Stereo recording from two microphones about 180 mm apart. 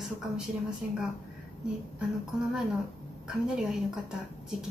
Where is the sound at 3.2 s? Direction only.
5° right (ahead or behind).